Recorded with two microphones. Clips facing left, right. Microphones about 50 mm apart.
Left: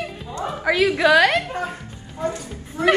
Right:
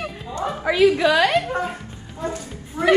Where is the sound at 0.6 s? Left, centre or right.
Left.